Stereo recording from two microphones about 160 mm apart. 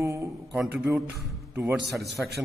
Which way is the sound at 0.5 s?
5° right (ahead or behind).